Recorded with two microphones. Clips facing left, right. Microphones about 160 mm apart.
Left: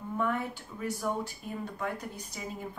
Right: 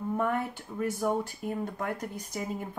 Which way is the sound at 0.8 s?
50° right (ahead or behind).